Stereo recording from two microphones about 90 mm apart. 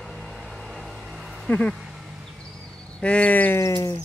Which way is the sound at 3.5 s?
30° left (ahead or behind).